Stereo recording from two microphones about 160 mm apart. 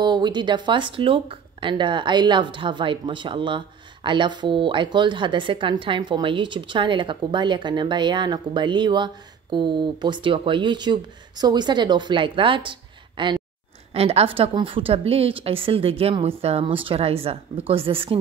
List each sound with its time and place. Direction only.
0.0 s a woman's voice: 30° right (ahead or behind)